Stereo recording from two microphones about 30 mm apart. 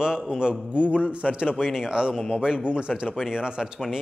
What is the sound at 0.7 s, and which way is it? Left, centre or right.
Speech, right.